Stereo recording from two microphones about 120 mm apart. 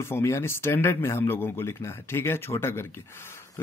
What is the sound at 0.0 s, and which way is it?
Speech, 25° left (ahead or behind).